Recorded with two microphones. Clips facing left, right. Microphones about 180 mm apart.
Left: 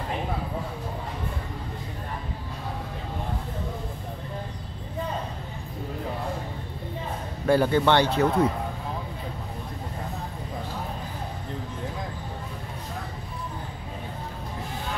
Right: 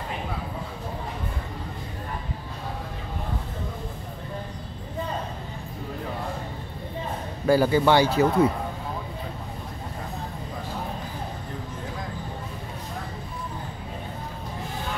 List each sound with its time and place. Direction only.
7.4 s a man's voice: 5° right (ahead or behind)